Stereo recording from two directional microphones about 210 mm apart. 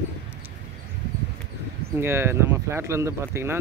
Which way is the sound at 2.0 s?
10° right (ahead or behind).